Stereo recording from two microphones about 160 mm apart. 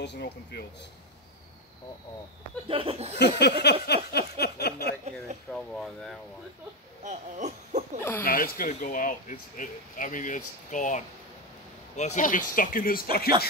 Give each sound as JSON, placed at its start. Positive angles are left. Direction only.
{"t": 0.0, "sound": "a sound", "side_deg": 90}
{"t": 2.7, "sound": "laughter", "side_deg": -35}
{"t": 3.2, "sound": "a sound", "side_deg": 90}
{"t": 5.5, "sound": "speech", "side_deg": 5}
{"t": 7.1, "sound": "speech", "side_deg": -50}
{"t": 8.2, "sound": "speech", "side_deg": 65}